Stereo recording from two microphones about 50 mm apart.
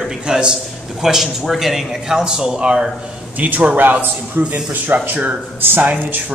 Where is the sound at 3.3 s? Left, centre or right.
Right.